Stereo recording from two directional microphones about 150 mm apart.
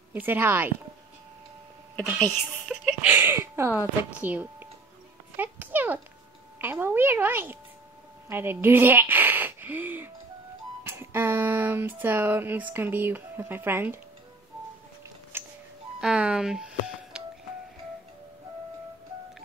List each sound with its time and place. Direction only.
0.1 s a child's voice: 15° right (ahead or behind)
2.7 s a child's voice: 5° right (ahead or behind)
10.8 s a sound: 15° right (ahead or behind)
15.3 s music: 15° right (ahead or behind)
16.0 s speech: 5° right (ahead or behind)